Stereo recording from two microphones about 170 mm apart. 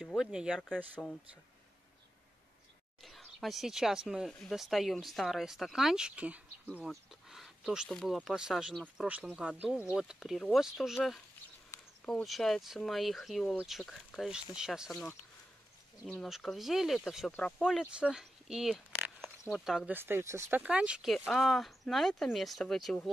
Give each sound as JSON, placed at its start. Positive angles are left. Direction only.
{"t": 0.0, "sound": "speech", "side_deg": 0}
{"t": 3.0, "sound": "speech", "side_deg": 0}
{"t": 11.7, "sound": "a sound", "side_deg": 20}
{"t": 12.1, "sound": "speech", "side_deg": 5}
{"t": 16.1, "sound": "speech", "side_deg": 0}
{"t": 20.0, "sound": "speech", "side_deg": -15}